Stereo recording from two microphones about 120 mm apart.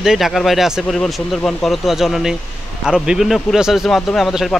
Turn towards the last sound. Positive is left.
turn(degrees=0)  # may be behind; listen again after turning